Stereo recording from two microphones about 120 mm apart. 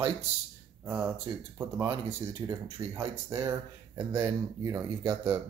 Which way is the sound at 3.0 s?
25° right (ahead or behind).